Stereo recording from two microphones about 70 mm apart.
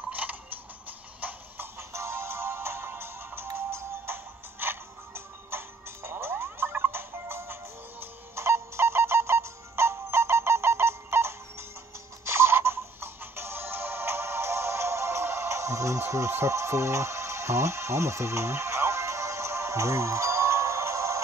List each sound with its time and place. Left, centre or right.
0.1 s music: right
1.2 s music: right